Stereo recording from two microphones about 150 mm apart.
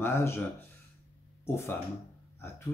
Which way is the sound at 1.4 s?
15° left (ahead or behind).